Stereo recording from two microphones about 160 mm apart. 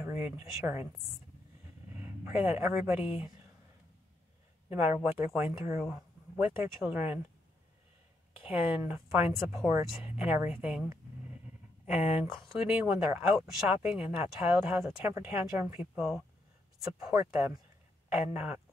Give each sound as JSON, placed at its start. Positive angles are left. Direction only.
{"t": 0.0, "sound": "speech", "side_deg": -15}
{"t": 2.0, "sound": "speech", "side_deg": -15}
{"t": 4.6, "sound": "speech", "side_deg": -10}
{"t": 8.3, "sound": "speech", "side_deg": -10}
{"t": 17.1, "sound": "speech", "side_deg": -15}